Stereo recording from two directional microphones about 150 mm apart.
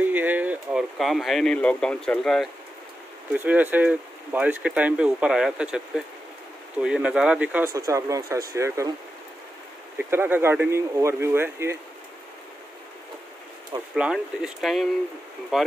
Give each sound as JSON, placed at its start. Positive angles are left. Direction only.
{"t": 0.0, "sound": "speech", "side_deg": -10}
{"t": 3.3, "sound": "speech", "side_deg": -10}
{"t": 7.7, "sound": "speech", "side_deg": -20}
{"t": 9.9, "sound": "speech", "side_deg": -15}
{"t": 13.9, "sound": "speech", "side_deg": -5}